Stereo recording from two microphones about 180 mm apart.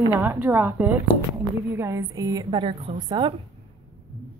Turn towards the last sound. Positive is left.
turn(degrees=-25)  # may be behind; listen again after turning